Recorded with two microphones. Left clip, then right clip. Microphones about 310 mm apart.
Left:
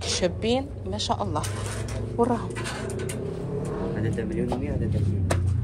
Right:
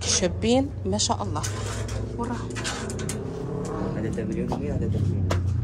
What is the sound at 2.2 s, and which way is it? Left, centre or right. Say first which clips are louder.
Speech: left 9 dB; centre.